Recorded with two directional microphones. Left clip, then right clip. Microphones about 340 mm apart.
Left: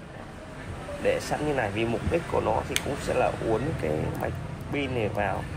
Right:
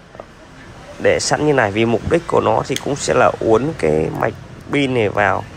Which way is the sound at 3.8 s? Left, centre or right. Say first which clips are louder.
Right 13 dB; right.